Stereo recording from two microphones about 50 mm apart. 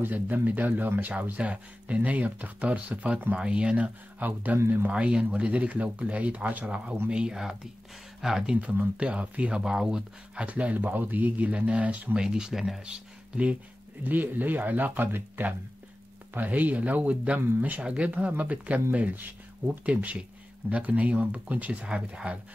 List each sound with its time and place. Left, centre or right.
0.0 s speech: right
3.3 s speech: right
4.9 s speech: centre
7.1 s speech: centre
8.5 s speech: right
10.4 s speech: right
12.2 s speech: centre
14.0 s speech: right
19.8 s speech: right